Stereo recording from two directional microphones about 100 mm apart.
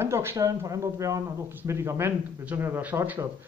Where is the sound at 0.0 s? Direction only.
25° right (ahead or behind).